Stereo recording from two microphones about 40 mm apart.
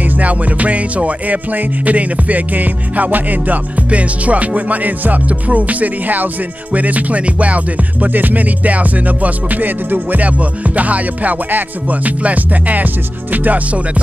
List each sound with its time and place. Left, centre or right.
0.0 s music: right
8.1 s music: right